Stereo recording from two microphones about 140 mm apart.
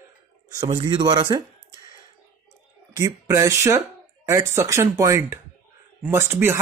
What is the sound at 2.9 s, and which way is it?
Speech, 20° right (ahead or behind).